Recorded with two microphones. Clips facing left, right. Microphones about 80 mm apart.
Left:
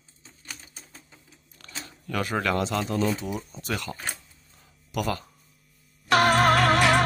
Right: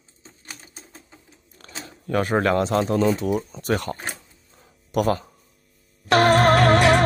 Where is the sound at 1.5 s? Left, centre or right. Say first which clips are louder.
Right 3 dB; right.